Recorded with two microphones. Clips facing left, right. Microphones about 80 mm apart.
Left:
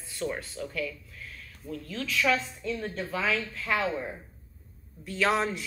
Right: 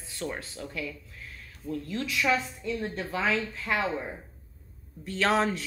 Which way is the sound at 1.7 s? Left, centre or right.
Centre.